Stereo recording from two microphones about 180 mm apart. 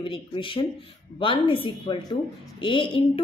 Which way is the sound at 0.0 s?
30° left (ahead or behind).